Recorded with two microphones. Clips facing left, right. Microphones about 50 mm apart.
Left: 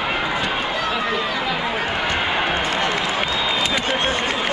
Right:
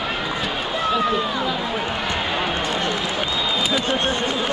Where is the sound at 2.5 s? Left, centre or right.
Left.